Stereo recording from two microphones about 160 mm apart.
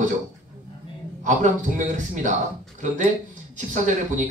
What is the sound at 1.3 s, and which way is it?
Speech, 50° right (ahead or behind).